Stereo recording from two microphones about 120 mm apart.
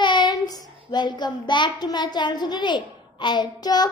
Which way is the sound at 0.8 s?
35° left (ahead or behind).